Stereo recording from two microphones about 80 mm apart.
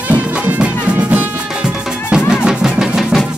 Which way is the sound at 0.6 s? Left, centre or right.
Centre.